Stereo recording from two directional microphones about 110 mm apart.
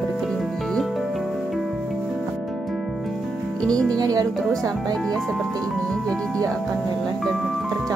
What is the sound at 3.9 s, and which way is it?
Speech, 35° right (ahead or behind).